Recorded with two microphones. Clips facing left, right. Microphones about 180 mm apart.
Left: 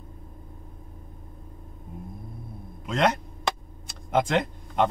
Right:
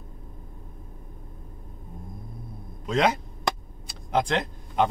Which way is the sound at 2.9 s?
Centre (ahead or behind).